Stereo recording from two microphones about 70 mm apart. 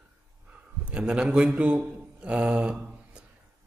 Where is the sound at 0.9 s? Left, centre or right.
Centre.